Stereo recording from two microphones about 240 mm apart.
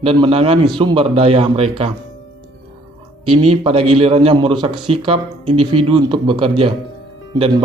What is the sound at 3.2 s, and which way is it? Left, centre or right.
A man's voice, right.